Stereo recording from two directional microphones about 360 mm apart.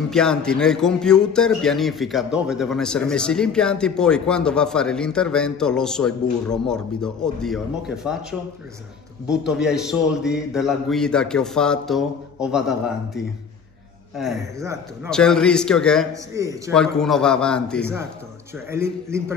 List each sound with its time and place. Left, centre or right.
0.1 s speech: centre
16.1 s a man's voice: centre
16.7 s a man's voice: centre